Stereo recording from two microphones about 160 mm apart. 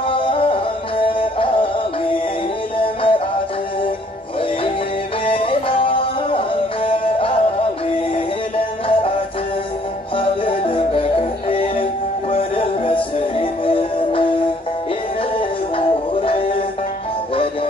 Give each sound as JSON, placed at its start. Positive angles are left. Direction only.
{"t": 0.1, "sound": "music", "side_deg": 35}
{"t": 2.8, "sound": "music", "side_deg": 35}
{"t": 5.2, "sound": "music", "side_deg": 35}
{"t": 8.5, "sound": "music", "side_deg": 35}
{"t": 10.1, "sound": "music", "side_deg": 35}
{"t": 15.3, "sound": "music", "side_deg": 35}